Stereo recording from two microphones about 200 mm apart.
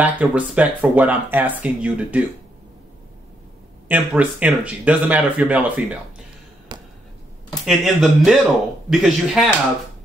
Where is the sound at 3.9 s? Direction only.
5° right (ahead or behind).